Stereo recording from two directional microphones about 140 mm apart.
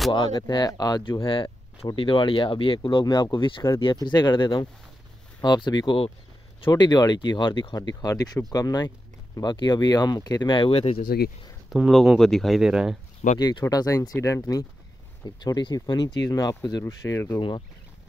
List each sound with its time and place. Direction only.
0.1 s speech: 30° left (ahead or behind); by 11.1 s 45° left (ahead or behind)
11.7 s speech: centre (ahead or behind)
13.4 s speech: 30° left (ahead or behind)
17.4 s speech: 35° left (ahead or behind)